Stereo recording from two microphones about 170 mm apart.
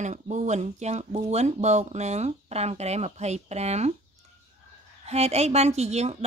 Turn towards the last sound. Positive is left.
turn(degrees=-40)  # may be behind; listen again after turning